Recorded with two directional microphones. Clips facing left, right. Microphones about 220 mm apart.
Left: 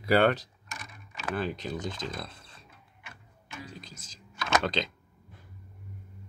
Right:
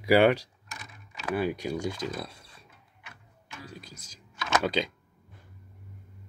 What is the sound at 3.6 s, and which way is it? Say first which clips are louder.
Speech: right 3 dB; 10° right (ahead or behind).